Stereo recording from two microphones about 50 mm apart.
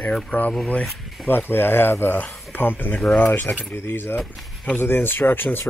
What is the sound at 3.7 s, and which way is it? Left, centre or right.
Speech, left.